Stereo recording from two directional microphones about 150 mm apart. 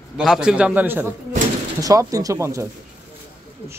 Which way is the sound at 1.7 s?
25° right (ahead or behind).